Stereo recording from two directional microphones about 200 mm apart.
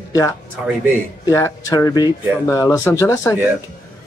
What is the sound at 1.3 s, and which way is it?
Speech, 15° left (ahead or behind).